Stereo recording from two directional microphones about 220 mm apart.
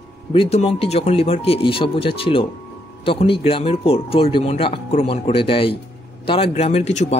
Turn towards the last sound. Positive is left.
turn(degrees=30)  # may be behind; listen again after turning